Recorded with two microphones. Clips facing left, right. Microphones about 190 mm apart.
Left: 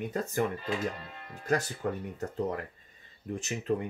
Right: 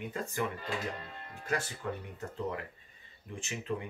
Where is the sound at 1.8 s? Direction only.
45° left (ahead or behind).